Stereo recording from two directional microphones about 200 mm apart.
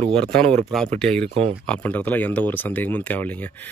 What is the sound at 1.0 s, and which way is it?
Speech, 5° left (ahead or behind).